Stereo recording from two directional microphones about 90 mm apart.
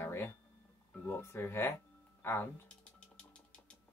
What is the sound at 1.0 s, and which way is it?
Speech, 25° left (ahead or behind).